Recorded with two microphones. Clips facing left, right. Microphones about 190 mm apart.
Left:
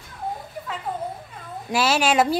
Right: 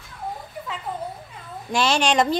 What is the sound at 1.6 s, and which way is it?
Speech, 5° left (ahead or behind).